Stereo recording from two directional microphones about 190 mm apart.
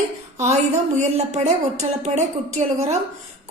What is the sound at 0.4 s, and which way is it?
A woman's voice, 35° right (ahead or behind).